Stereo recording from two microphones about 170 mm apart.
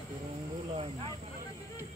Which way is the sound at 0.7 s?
35° right (ahead or behind).